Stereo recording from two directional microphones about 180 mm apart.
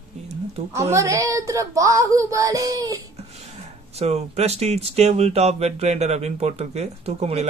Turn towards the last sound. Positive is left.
turn(degrees=-35)  # may be behind; listen again after turning